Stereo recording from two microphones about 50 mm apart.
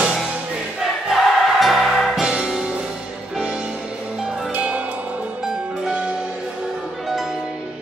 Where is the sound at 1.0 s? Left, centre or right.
Centre.